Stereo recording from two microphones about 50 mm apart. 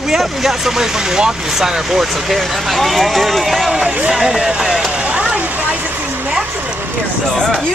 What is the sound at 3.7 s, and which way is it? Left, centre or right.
Speech, centre.